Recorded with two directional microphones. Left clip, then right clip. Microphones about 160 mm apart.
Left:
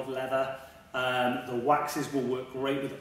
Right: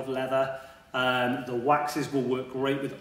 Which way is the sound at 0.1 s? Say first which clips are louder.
Right 3 dB; 25° right (ahead or behind).